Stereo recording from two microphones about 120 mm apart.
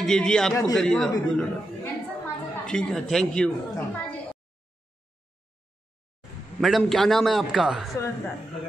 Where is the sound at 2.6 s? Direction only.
5° left (ahead or behind).